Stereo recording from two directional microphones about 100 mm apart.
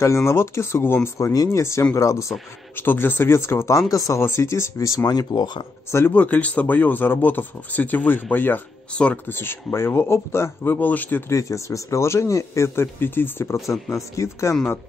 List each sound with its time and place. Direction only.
0.0 s speech: 25° left (ahead or behind); by 5.7 s 50° left (ahead or behind)
5.9 s speech: 25° left (ahead or behind)
11.3 s speech: 30° left (ahead or behind)